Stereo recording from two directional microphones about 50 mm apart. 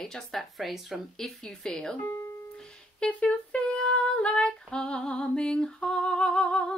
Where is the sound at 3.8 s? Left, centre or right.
Centre.